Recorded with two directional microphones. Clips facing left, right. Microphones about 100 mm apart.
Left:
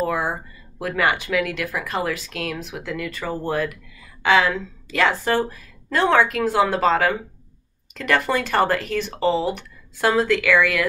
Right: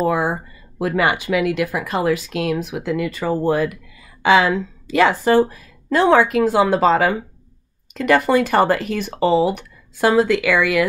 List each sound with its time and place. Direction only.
0.0 s speech: 20° right (ahead or behind)